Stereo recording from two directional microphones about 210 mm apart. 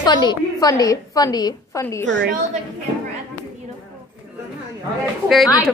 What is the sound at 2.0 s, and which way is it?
Speech, 60° right (ahead or behind).